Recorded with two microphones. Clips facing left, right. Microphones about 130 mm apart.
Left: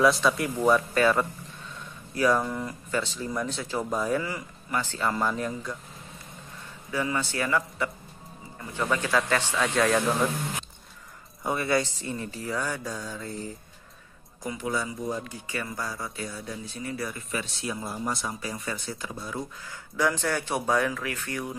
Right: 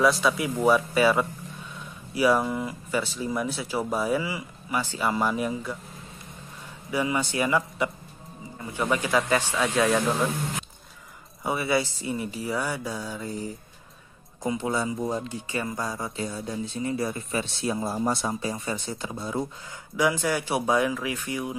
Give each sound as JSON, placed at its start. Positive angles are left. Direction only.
{"t": 0.0, "sound": "speech", "side_deg": 0}
{"t": 6.9, "sound": "speech", "side_deg": -15}
{"t": 11.4, "sound": "speech", "side_deg": -5}
{"t": 14.4, "sound": "speech", "side_deg": -25}
{"t": 20.0, "sound": "speech", "side_deg": -10}